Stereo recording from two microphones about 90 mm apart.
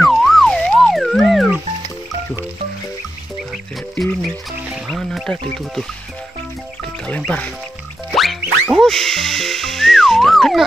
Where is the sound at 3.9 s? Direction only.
Centre (ahead or behind).